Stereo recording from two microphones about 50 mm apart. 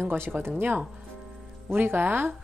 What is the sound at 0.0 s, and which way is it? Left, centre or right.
A woman's voice, right.